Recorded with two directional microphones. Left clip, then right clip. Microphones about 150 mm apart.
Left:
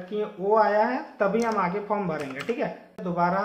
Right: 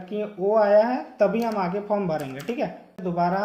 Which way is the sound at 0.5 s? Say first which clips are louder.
Right 3 dB; 45° right (ahead or behind).